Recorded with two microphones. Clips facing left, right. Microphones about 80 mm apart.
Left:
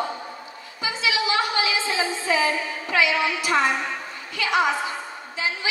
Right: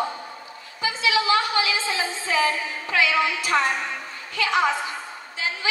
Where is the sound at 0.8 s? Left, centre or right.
Left.